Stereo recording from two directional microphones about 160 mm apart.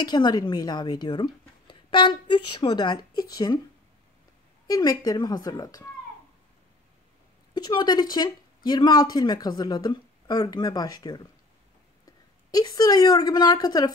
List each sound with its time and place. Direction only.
0.0 s speech: 25° left (ahead or behind)
4.6 s speech: 25° left (ahead or behind)
7.5 s speech: 25° left (ahead or behind)
12.4 s speech: 25° left (ahead or behind)